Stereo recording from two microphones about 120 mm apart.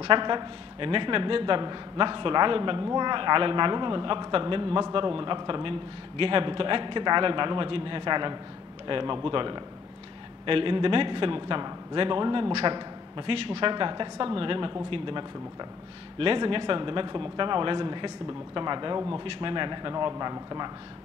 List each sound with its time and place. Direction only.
0.0 s a man's voice: 45° right (ahead or behind)